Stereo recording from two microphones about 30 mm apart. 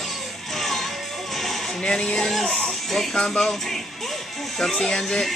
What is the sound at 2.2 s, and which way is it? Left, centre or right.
Speech, centre.